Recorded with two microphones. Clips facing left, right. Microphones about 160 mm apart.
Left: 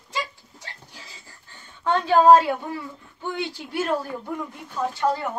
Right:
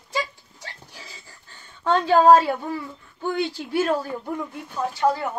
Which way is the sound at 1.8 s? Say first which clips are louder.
Right 2 dB; 15° left (ahead or behind).